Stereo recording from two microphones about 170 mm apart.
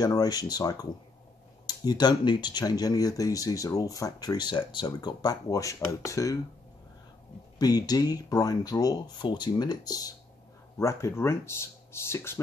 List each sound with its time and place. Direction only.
0.0 s speech: 20° left (ahead or behind)
7.5 s speech: 20° left (ahead or behind)